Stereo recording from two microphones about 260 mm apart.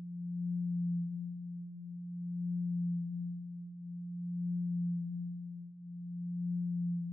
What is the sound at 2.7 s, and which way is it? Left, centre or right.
Singing bowl, centre.